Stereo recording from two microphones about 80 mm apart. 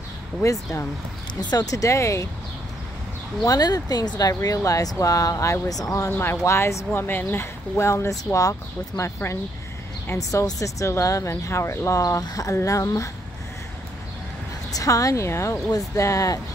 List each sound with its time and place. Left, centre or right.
0.4 s speech: left
1.4 s speech: left
3.4 s speech: left
6.0 s speech: left
12.0 s speech: left
14.7 s speech: left